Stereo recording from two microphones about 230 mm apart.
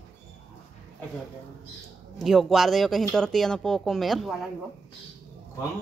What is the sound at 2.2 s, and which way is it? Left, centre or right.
Speech, centre.